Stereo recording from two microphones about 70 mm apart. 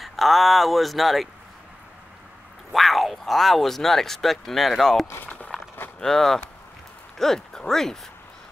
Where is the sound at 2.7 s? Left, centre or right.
Centre.